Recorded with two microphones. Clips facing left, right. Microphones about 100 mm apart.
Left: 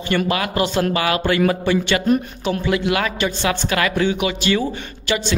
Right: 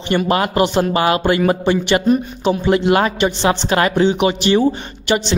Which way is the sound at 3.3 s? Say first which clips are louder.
Right 4 dB; 20° right (ahead or behind).